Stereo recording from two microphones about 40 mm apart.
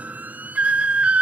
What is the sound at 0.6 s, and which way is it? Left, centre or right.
Whistle, right.